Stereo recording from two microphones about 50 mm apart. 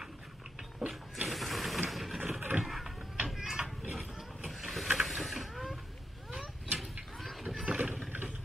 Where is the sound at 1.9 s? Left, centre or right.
Centre.